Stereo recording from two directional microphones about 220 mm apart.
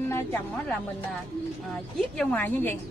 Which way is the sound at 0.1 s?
10° left (ahead or behind).